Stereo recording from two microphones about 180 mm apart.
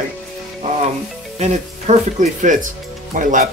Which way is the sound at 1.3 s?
40° right (ahead or behind).